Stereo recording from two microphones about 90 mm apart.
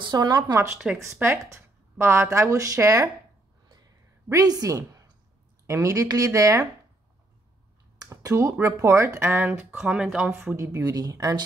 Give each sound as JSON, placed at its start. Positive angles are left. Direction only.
{"t": 0.0, "sound": "speech", "side_deg": -50}
{"t": 1.5, "sound": "speech", "side_deg": -25}
{"t": 4.3, "sound": "a woman's voice", "side_deg": -40}
{"t": 8.1, "sound": "speech", "side_deg": -40}
{"t": 10.5, "sound": "speech", "side_deg": -30}